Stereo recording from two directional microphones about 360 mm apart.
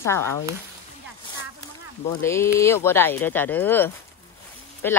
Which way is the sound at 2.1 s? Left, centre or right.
Centre.